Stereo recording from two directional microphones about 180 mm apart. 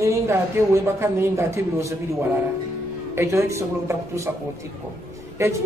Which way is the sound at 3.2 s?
15° right (ahead or behind).